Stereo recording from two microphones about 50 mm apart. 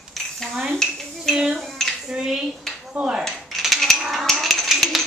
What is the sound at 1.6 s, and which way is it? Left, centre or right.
Dishes, centre.